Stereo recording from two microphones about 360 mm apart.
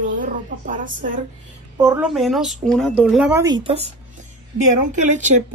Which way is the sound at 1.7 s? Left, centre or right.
Centre.